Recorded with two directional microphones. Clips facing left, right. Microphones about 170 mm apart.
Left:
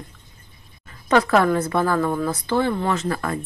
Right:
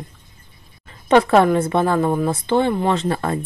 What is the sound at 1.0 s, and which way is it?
Speech, 25° right (ahead or behind).